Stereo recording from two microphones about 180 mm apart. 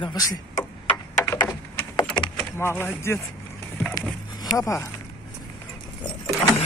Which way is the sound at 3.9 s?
20° left (ahead or behind).